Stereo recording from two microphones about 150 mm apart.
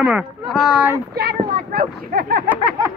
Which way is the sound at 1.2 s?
80° right.